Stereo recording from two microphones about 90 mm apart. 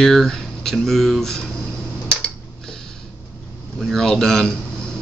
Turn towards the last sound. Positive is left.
turn(degrees=5)  # may be behind; listen again after turning